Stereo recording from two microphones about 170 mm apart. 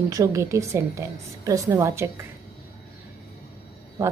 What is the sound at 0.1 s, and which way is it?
A woman's voice, 20° right (ahead or behind).